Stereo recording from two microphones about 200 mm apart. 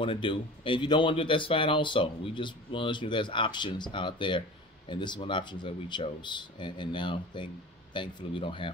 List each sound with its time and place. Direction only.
0.0 s speech: 25° left (ahead or behind)